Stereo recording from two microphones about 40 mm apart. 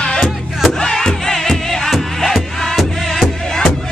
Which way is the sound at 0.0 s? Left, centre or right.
Centre.